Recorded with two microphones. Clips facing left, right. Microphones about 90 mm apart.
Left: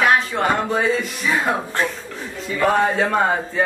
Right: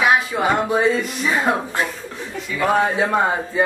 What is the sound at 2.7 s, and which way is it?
Speech, 10° right (ahead or behind).